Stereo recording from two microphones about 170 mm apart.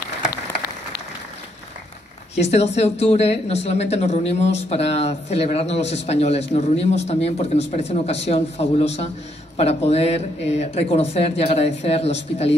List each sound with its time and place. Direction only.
2.4 s speech: 40° left (ahead or behind)